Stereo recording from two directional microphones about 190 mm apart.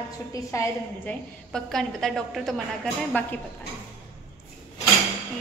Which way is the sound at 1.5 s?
Centre (ahead or behind).